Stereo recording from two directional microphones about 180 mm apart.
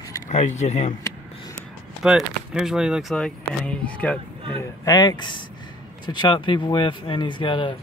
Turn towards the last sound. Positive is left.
turn(degrees=25)  # may be behind; listen again after turning